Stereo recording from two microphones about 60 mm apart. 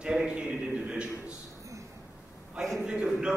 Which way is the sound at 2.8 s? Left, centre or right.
Centre.